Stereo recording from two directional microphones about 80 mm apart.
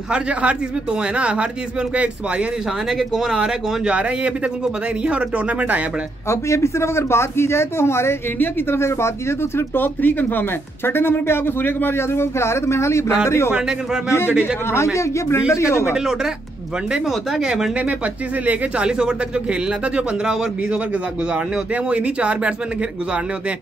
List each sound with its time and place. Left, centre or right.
0.1 s speech: centre
2.9 s speech: centre
6.2 s a man's voice: left
13.5 s speech: centre
14.0 s a man's voice: left
16.9 s speech: centre
21.9 s speech: centre